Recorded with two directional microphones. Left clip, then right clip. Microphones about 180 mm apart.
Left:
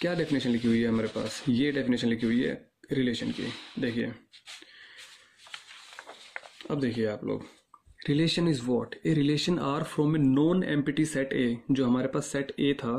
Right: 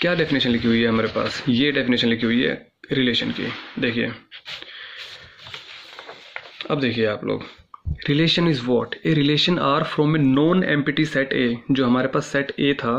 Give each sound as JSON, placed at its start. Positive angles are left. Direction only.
{"t": 0.0, "sound": "speech", "side_deg": 50}
{"t": 6.6, "sound": "speech", "side_deg": 55}